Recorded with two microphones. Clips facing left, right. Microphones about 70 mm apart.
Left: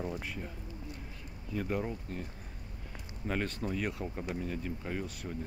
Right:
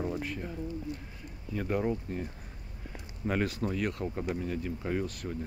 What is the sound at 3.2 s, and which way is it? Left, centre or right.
Speech, centre.